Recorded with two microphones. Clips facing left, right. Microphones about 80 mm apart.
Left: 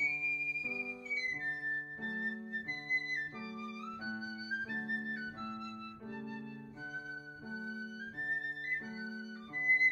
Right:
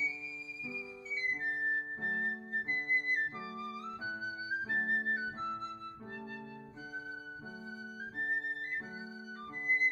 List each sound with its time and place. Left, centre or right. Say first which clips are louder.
2.0 s music: right 3 dB; right